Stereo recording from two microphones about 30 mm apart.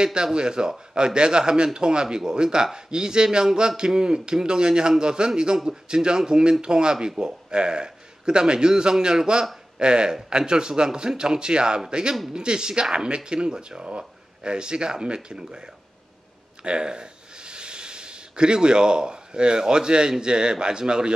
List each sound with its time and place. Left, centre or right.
0.0 s a man's voice: right